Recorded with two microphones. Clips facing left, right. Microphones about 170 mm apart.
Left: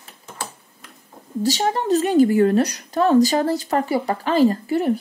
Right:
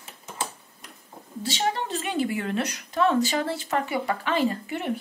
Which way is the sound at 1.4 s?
40° left (ahead or behind).